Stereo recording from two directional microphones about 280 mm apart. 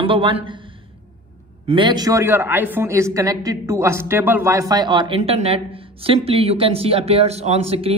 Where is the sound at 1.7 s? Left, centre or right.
Centre.